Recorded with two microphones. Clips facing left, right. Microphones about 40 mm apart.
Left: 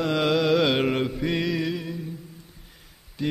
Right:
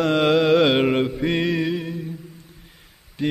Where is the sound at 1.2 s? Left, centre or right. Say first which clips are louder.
Right 4 dB; right.